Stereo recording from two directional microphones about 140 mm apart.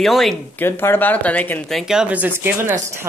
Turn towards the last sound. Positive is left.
turn(degrees=-15)  # may be behind; listen again after turning